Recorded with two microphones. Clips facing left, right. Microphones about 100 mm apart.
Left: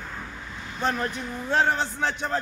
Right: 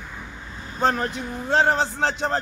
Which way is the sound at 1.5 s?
85° right.